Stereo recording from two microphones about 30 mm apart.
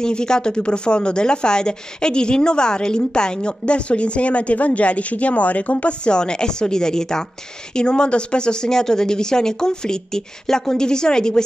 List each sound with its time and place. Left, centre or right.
0.0 s a woman's voice: left
6.0 s a woman's voice: left
7.7 s speech: left
8.7 s a woman's voice: left